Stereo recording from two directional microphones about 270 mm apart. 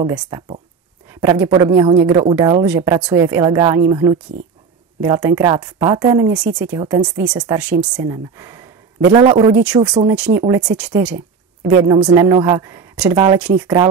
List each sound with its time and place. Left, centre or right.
0.0 s speech: centre
6.8 s a man's voice: centre
9.5 s speech: centre